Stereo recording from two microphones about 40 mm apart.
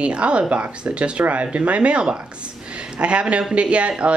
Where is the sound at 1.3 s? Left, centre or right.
Right.